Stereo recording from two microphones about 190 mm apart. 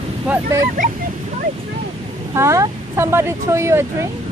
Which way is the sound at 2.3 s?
15° right (ahead or behind).